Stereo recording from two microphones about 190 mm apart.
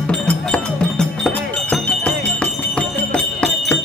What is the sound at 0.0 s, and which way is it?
Music, 5° left (ahead or behind).